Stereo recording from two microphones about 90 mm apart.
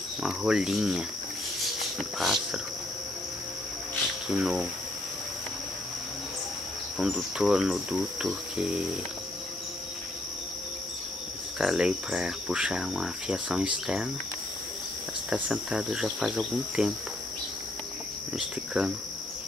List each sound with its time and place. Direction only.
0.2 s speech: 5° right (ahead or behind)
4.3 s speech: 5° right (ahead or behind)
7.0 s speech: 5° right (ahead or behind)
11.5 s speech: 5° right (ahead or behind)
15.2 s speech: 10° right (ahead or behind)
18.8 s speech: 10° right (ahead or behind)